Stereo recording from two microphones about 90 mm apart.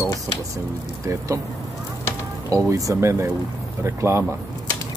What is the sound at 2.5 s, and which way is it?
Speech, 40° right (ahead or behind).